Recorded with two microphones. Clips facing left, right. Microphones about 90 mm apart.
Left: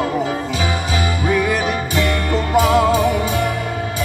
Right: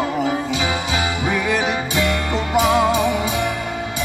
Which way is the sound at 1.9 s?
40° left (ahead or behind).